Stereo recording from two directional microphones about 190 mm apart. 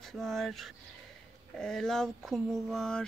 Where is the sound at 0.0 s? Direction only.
Centre (ahead or behind).